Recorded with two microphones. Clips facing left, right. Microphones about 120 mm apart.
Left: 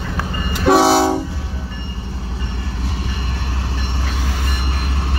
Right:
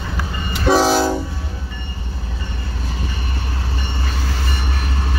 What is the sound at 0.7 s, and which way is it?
Train, 75° left (ahead or behind).